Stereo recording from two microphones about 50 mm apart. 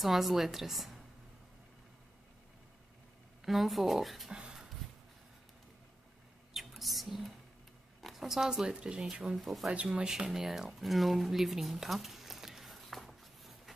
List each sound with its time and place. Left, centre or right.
0.0 s a woman's voice: centre
3.4 s a woman's voice: centre
4.3 s dog: centre
6.5 s a sound: centre
8.0 s speech: centre
9.4 s a woman's voice: centre
9.7 s speech: centre